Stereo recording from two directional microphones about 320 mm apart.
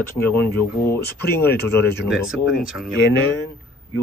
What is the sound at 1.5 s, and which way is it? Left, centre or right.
Speech, left.